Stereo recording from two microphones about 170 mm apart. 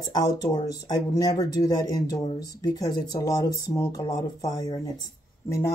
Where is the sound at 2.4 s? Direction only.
25° left (ahead or behind).